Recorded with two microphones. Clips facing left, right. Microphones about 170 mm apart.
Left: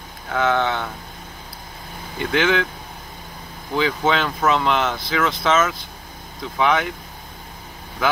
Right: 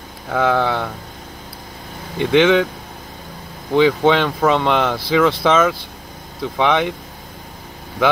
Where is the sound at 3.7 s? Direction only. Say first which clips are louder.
Right 7 dB; 30° right (ahead or behind).